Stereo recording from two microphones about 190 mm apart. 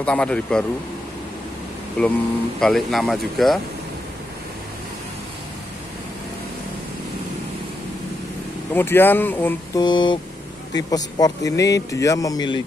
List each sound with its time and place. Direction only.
0.0 s speech: 5° left (ahead or behind)
2.0 s speech: 5° left (ahead or behind)
8.7 s speech: 10° left (ahead or behind)
9.8 s speech: 25° left (ahead or behind)